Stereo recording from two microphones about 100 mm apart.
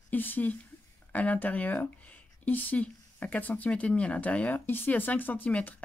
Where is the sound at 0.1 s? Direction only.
20° left (ahead or behind).